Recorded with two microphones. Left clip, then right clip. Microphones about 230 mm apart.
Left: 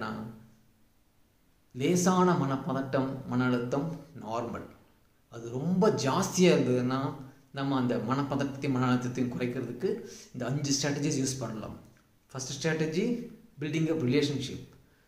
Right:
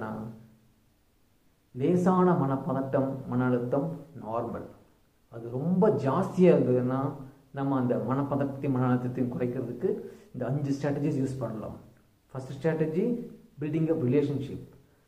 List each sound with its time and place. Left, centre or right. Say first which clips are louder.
2.0 s a man's voice: right 1 dB; centre